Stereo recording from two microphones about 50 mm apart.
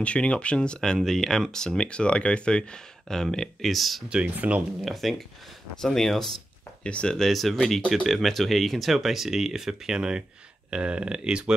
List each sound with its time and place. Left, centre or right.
0.0 s speech: left; by 4.0 s centre
4.1 s speech: right
4.8 s speech: centre
6.8 s speech: left
7.2 s speech: centre